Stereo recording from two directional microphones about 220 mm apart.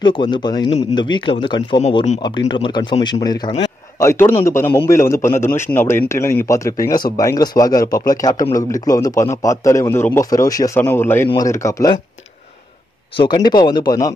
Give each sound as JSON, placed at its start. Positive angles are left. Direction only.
{"t": 0.0, "sound": "a man's voice", "side_deg": 20}
{"t": 13.1, "sound": "a man's voice", "side_deg": 20}